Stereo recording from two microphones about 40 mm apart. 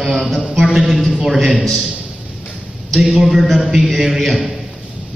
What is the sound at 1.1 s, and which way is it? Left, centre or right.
Speech, centre.